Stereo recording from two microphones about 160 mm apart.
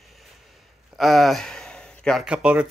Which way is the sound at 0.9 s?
Centre (ahead or behind).